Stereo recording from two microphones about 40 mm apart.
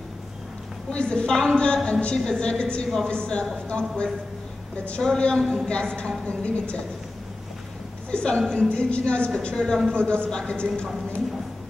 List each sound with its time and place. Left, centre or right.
0.8 s a woman's voice: left
8.1 s a woman's voice: left